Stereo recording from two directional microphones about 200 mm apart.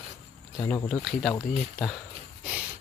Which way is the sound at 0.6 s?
10° left (ahead or behind).